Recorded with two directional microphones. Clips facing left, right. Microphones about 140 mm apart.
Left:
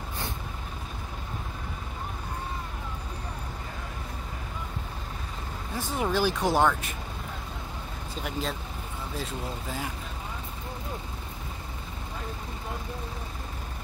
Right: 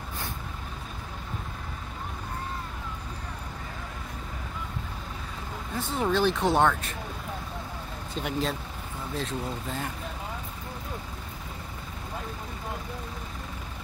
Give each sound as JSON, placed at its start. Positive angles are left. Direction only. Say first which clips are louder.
{"t": 5.8, "sound": "speech", "louder": "right 1 dB", "side_deg": 10}
{"t": 8.1, "sound": "speech", "louder": "right 3 dB", "side_deg": 0}